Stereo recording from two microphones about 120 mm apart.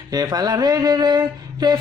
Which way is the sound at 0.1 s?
35° right (ahead or behind).